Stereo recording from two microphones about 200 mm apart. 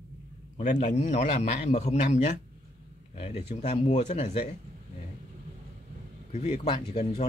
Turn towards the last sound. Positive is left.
turn(degrees=25)  # may be behind; listen again after turning